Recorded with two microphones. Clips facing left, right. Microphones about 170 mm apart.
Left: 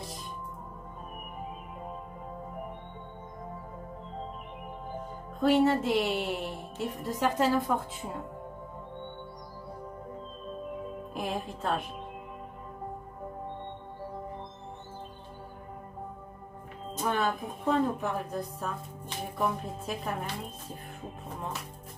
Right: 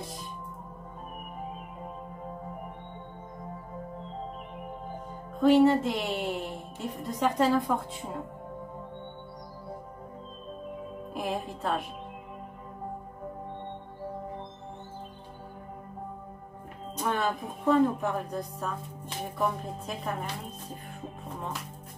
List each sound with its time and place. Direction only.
5.4 s speech: centre (ahead or behind)
11.1 s speech: centre (ahead or behind)
16.9 s a woman's voice: centre (ahead or behind)